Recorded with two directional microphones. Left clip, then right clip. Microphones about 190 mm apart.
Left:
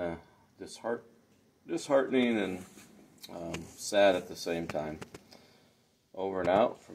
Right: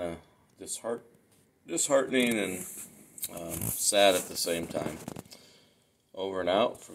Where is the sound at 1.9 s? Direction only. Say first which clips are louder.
Right 1 dB; 5° right (ahead or behind).